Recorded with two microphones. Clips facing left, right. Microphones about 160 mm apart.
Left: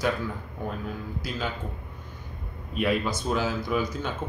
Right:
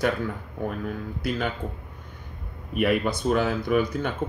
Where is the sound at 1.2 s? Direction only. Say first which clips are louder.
Right 5 dB; 60° right (ahead or behind).